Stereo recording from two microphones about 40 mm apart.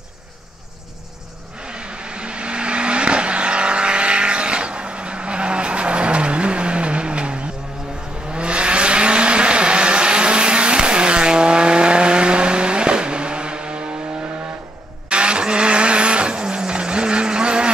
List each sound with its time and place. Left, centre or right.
1.7 s vehicle: right
15.0 s vehicle: right